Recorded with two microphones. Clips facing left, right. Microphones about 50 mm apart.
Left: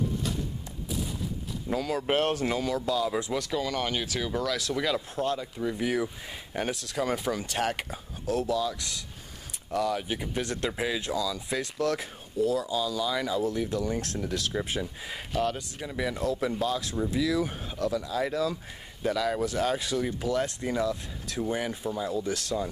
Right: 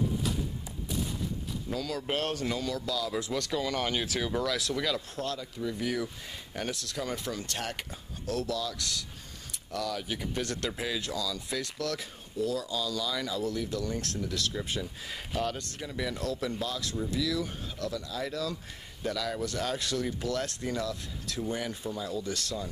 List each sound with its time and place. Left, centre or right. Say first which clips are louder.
0.8 s a sound: left 1 dB; centre
1.7 s speech: left 6 dB; left
3.3 s speech: left 1 dB; centre
4.7 s speech: left 3 dB; centre